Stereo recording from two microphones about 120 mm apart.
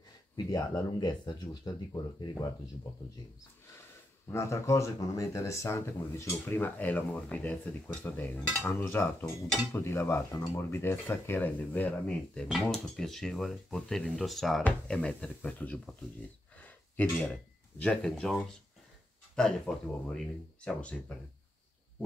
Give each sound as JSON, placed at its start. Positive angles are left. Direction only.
{"t": 0.4, "sound": "speech", "side_deg": 30}
{"t": 4.3, "sound": "speech", "side_deg": 25}
{"t": 12.6, "sound": "speech", "side_deg": 5}